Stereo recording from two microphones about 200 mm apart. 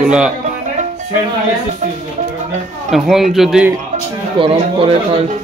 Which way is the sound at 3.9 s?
30° right (ahead or behind).